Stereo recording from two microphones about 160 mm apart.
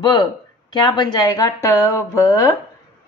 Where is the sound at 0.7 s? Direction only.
30° left (ahead or behind).